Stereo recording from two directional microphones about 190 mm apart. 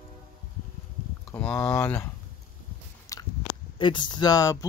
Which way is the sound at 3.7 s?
25° left (ahead or behind).